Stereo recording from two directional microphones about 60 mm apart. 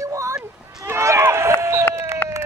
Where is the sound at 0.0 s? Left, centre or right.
Right.